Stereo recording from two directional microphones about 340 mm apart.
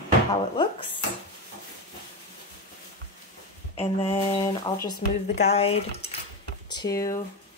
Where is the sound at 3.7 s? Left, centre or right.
Centre.